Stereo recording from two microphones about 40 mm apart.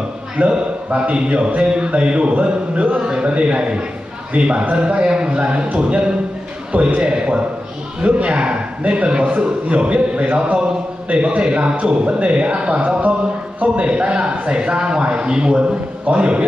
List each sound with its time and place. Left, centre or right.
0.4 s speech: right